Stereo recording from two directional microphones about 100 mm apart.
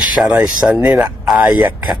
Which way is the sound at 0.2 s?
10° right (ahead or behind).